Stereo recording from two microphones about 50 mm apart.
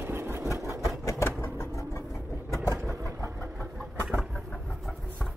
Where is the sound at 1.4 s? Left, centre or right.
Left.